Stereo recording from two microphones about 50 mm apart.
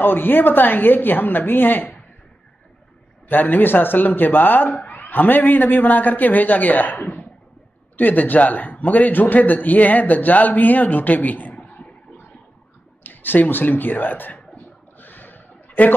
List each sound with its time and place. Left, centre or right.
0.0 s a woman's voice: left
3.3 s a man's voice: left
4.7 s a sound: left
5.1 s a man's voice: left
13.0 s speech: left
15.0 s a sound: left